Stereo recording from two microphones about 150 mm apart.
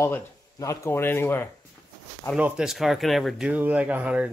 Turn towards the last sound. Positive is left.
turn(degrees=-10)  # may be behind; listen again after turning